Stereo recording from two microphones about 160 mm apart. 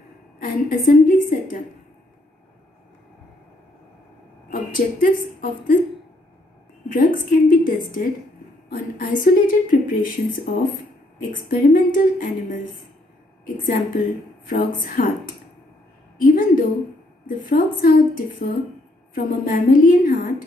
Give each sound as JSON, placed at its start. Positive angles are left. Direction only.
{"t": 0.4, "sound": "a woman's voice", "side_deg": 55}
{"t": 4.5, "sound": "a woman's voice", "side_deg": 55}
{"t": 6.9, "sound": "a woman's voice", "side_deg": 60}
{"t": 13.7, "sound": "a woman's voice", "side_deg": 55}
{"t": 16.2, "sound": "a woman's voice", "side_deg": 60}